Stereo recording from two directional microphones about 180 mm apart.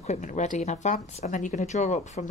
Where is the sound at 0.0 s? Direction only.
40° left (ahead or behind).